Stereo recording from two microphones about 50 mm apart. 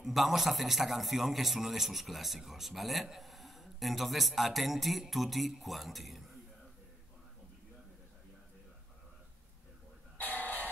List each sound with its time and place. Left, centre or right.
0.0 s a man's voice: centre
10.1 s music: left